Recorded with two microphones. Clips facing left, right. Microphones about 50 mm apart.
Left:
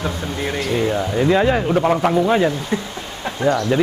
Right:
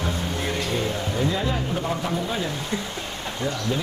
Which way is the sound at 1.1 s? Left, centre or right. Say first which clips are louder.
Left 10 dB; left.